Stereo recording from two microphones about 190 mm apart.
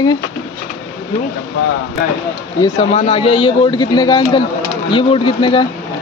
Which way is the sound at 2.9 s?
30° left (ahead or behind).